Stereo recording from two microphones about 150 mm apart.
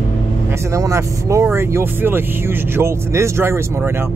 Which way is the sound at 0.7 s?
20° right (ahead or behind).